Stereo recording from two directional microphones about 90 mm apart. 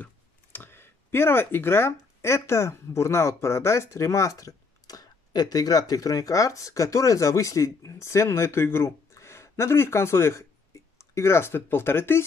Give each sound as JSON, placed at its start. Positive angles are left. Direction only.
{"t": 0.0, "sound": "speech", "side_deg": 20}